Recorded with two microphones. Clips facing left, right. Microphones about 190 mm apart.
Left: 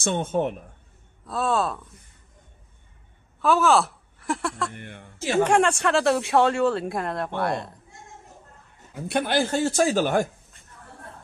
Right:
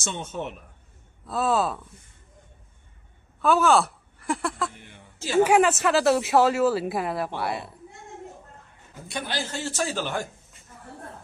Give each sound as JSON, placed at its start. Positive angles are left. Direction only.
{"t": 0.0, "sound": "speech", "side_deg": 55}
{"t": 1.2, "sound": "speech", "side_deg": 0}
{"t": 3.3, "sound": "speech", "side_deg": 0}
{"t": 4.7, "sound": "speech", "side_deg": 60}
{"t": 5.4, "sound": "speech", "side_deg": -5}
{"t": 9.0, "sound": "speech", "side_deg": 55}